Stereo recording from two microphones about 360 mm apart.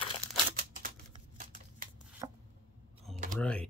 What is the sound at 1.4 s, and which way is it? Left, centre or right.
Shuffling cards, right.